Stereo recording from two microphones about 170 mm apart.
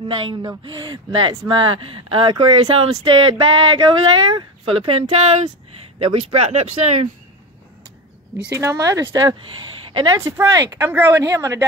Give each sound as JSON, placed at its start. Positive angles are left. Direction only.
{"t": 0.1, "sound": "speech", "side_deg": -25}
{"t": 8.5, "sound": "speech", "side_deg": -20}
{"t": 9.8, "sound": "a sound", "side_deg": -30}
{"t": 10.1, "sound": "speech", "side_deg": -15}